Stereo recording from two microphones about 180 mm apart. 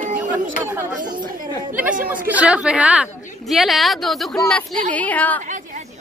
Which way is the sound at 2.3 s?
5° right (ahead or behind).